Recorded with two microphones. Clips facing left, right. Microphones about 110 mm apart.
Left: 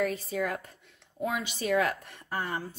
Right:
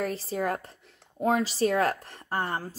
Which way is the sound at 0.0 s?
30° right (ahead or behind).